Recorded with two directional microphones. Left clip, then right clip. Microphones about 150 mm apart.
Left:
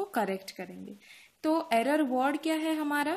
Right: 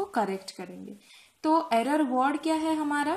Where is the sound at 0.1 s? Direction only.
30° left (ahead or behind).